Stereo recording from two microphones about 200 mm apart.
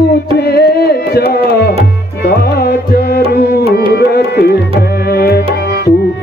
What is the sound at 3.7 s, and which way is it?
Tabla, 50° left (ahead or behind).